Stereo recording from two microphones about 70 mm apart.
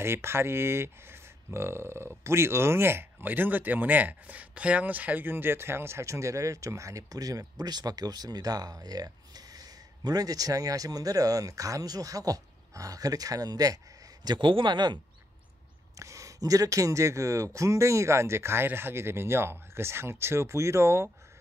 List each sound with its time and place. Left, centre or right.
0.0 s speech: right
14.2 s a man's voice: right
16.0 s speech: right